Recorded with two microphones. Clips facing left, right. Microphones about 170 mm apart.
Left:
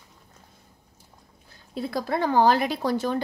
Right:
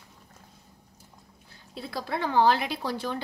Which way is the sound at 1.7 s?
50° left (ahead or behind).